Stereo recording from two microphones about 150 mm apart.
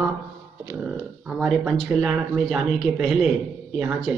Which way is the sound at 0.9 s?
10° right (ahead or behind).